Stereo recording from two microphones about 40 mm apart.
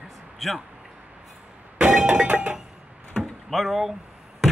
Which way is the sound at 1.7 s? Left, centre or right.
Right.